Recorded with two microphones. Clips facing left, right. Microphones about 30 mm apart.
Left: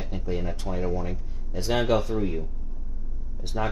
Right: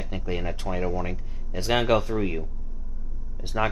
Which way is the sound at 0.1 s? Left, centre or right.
Right.